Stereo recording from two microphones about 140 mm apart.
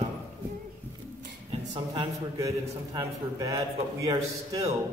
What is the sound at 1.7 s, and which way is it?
A woman's voice, 30° right (ahead or behind).